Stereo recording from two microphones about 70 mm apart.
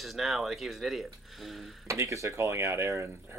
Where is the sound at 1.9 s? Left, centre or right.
Right.